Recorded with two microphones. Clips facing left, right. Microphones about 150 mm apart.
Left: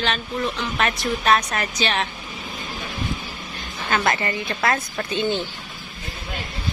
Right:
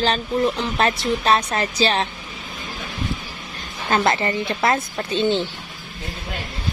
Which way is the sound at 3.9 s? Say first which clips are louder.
Right 3 dB; 25° right (ahead or behind).